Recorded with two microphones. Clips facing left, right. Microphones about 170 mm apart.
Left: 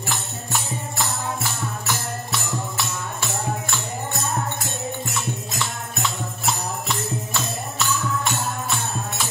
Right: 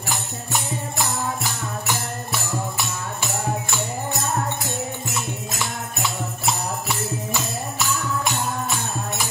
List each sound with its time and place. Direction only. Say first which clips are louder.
0.1 s music: right 2 dB; 15° right (ahead or behind)
5.0 s music: even; 5° right (ahead or behind)